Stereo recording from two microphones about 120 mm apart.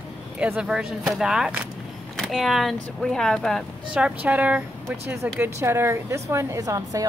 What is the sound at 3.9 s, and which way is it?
A woman's voice, 10° right (ahead or behind).